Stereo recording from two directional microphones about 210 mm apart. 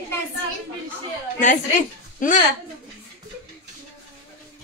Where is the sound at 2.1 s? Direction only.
40° left (ahead or behind).